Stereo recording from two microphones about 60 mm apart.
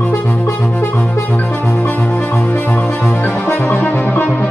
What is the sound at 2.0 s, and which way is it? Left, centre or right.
Music, left.